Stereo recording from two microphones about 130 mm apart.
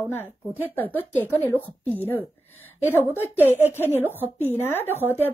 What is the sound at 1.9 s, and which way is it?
Speech, 15° left (ahead or behind).